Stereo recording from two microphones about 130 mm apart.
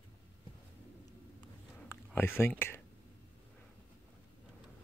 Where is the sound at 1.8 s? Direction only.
15° left (ahead or behind).